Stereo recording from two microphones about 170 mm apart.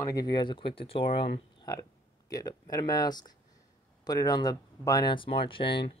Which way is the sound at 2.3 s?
20° left (ahead or behind).